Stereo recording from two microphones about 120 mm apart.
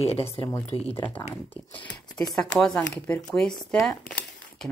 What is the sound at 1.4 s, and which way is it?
Speech, 15° left (ahead or behind).